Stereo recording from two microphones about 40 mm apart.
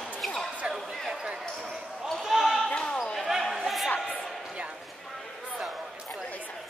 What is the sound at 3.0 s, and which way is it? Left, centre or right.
Basketball bounce, centre.